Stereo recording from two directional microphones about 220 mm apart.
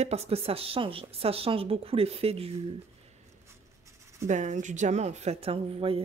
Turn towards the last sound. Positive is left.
turn(degrees=-25)  # may be behind; listen again after turning